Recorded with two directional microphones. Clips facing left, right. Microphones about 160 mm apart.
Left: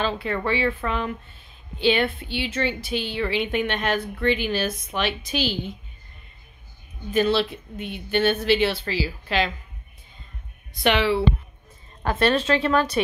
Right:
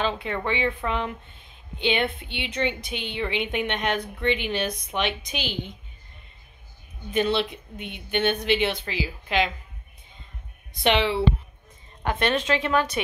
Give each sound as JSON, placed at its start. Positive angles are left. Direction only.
{"t": 0.0, "sound": "speech", "side_deg": -15}
{"t": 7.3, "sound": "speech", "side_deg": -20}
{"t": 10.8, "sound": "speech", "side_deg": -25}